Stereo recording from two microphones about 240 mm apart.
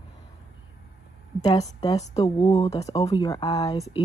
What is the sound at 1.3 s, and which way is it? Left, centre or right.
A woman's voice, left.